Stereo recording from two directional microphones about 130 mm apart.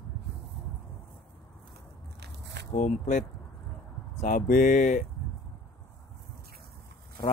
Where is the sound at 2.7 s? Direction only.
65° left (ahead or behind).